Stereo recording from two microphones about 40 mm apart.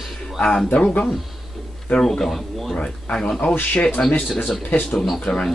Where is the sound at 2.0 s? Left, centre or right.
Centre.